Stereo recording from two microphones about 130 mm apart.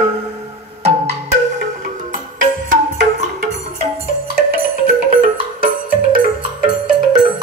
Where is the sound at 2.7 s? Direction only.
75° right (ahead or behind).